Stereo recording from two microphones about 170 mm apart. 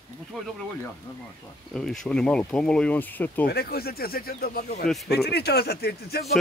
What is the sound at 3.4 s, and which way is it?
Speech, 65° left (ahead or behind).